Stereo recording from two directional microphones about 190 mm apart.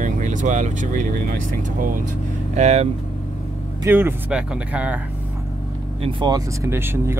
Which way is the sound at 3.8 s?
10° right (ahead or behind).